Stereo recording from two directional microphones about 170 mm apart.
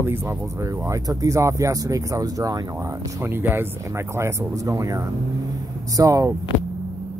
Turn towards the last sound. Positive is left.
turn(degrees=-20)  # may be behind; listen again after turning